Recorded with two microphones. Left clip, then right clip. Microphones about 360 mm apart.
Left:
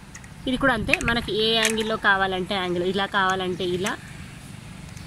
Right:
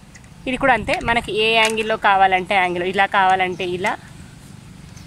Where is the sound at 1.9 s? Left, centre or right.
Centre.